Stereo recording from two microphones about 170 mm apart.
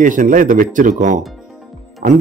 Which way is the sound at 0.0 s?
50° right (ahead or behind).